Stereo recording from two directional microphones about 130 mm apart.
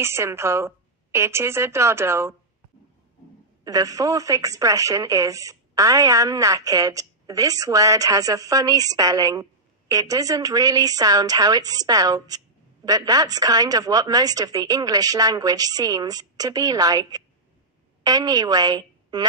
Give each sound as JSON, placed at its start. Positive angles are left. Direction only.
{"t": 0.0, "sound": "a woman's voice", "side_deg": -20}
{"t": 3.6, "sound": "a woman's voice", "side_deg": -30}